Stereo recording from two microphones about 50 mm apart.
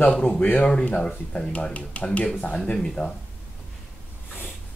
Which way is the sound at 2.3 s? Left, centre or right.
Left.